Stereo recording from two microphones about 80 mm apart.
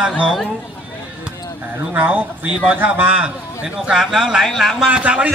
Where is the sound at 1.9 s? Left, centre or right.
Right; by 4.9 s centre.